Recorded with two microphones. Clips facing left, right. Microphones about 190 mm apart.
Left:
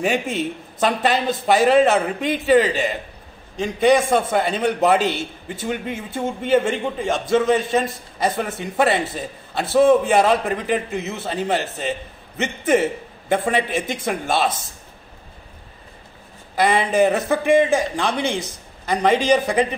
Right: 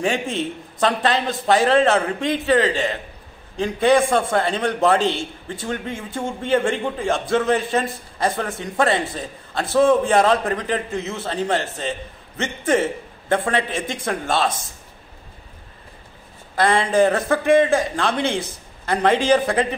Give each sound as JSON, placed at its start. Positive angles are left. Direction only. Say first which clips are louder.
{"t": 0.0, "sound": "a man's voice", "louder": "left 1 dB", "side_deg": 10}
{"t": 16.5, "sound": "a man's voice", "louder": "even", "side_deg": 10}